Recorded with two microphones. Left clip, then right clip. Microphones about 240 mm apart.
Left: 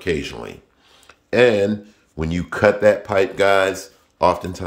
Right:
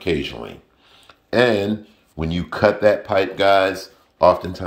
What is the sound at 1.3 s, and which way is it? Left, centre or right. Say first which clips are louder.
Speech: left 2 dB; centre.